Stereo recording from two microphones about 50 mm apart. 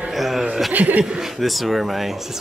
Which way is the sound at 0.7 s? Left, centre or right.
Right.